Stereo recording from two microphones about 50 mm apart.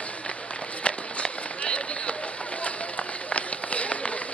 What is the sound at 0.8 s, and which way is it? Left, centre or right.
Run, left.